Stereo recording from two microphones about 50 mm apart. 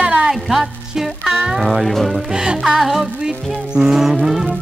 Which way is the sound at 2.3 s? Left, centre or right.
Centre.